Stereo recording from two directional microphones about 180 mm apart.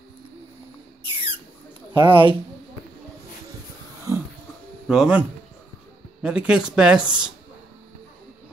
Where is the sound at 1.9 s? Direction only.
30° right (ahead or behind).